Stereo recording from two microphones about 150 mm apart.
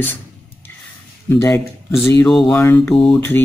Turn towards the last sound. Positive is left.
turn(degrees=5)  # may be behind; listen again after turning